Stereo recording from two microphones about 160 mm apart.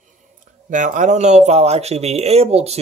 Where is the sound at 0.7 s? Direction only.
55° right (ahead or behind).